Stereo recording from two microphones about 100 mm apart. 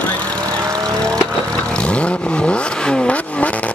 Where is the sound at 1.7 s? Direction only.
10° left (ahead or behind).